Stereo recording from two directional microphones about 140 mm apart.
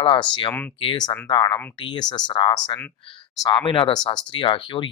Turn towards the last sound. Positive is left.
turn(degrees=40)  # may be behind; listen again after turning